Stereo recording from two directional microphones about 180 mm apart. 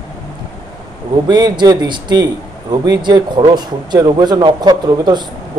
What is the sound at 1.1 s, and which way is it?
Speech, 25° right (ahead or behind).